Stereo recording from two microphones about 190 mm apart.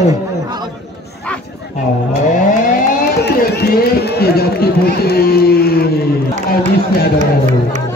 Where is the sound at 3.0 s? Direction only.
60° left (ahead or behind).